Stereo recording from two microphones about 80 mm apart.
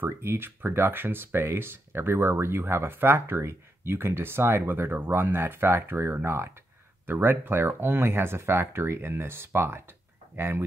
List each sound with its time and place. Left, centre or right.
0.0 s speech: right